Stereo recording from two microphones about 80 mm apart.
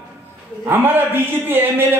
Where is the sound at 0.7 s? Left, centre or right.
Right.